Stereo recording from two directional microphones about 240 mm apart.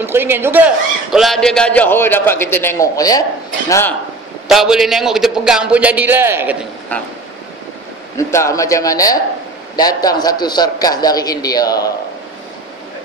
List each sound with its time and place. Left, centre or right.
0.0 s a man's voice: centre
4.5 s a man's voice: centre
8.2 s a man's voice: centre